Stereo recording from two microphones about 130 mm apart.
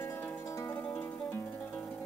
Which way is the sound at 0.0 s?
15° left (ahead or behind).